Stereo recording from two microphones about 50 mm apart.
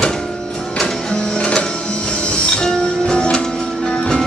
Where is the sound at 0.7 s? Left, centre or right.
Centre.